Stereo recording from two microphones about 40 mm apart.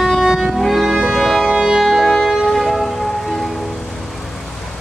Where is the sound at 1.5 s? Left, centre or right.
Centre.